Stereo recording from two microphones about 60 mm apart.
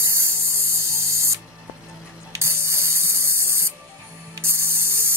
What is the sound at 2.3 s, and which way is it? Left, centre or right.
Spray, right.